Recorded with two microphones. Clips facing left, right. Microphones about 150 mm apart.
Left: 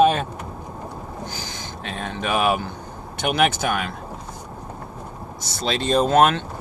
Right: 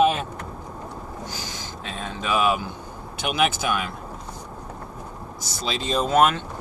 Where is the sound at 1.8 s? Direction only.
60° left (ahead or behind).